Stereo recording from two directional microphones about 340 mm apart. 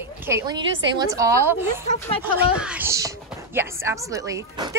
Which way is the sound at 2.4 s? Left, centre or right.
Centre.